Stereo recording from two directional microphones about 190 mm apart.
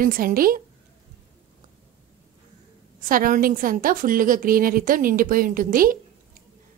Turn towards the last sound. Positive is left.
turn(degrees=-50)  # may be behind; listen again after turning